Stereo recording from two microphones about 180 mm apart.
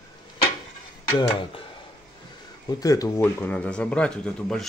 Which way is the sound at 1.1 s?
30° left (ahead or behind).